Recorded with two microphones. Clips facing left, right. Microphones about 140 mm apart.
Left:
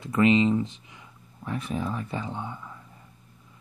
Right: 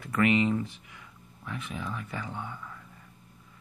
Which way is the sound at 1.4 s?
35° left (ahead or behind).